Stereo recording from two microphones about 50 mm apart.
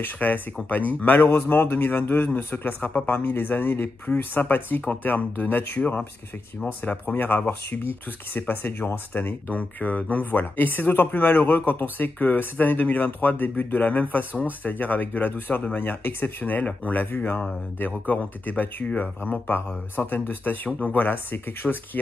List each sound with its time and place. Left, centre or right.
0.0 s speech: left
6.8 s speech: left